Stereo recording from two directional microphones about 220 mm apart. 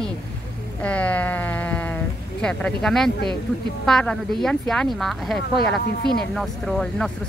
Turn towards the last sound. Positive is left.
turn(degrees=5)  # may be behind; listen again after turning